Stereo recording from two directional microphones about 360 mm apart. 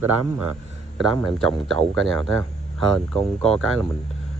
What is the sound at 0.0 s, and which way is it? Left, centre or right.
Speech, right.